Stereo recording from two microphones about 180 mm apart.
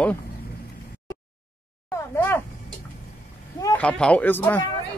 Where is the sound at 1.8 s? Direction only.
15° left (ahead or behind).